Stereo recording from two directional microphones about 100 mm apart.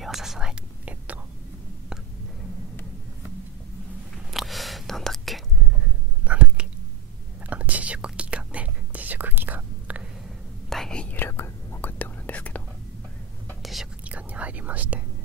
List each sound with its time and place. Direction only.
0.0 s whispering: 5° right (ahead or behind)
4.3 s whispering: centre (ahead or behind)
6.2 s whispering: 10° right (ahead or behind)
10.7 s whispering: 5° left (ahead or behind)
13.6 s whispering: centre (ahead or behind)
14.0 s whispering: 15° right (ahead or behind)